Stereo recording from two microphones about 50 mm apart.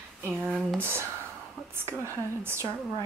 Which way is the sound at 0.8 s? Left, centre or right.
Right.